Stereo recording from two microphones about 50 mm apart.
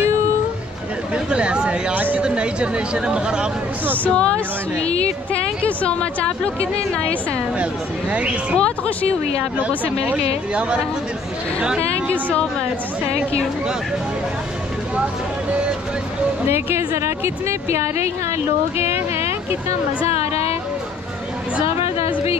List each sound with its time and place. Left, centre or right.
1.1 s speech: right
2.0 s speech: right
2.2 s speech: right
3.9 s a woman's voice: left
8.1 s speech: right
8.5 s a woman's voice: left
9.6 s speech: right
12.1 s a woman's voice: left
16.4 s a woman's voice: right